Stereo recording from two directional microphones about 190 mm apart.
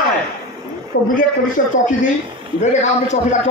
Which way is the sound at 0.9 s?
80° left.